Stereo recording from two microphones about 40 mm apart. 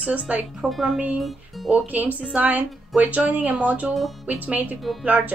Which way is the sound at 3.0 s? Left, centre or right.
Right.